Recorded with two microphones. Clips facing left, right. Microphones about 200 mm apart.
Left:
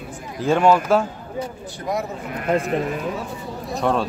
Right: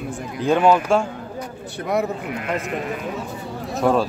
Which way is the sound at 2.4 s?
35° left (ahead or behind).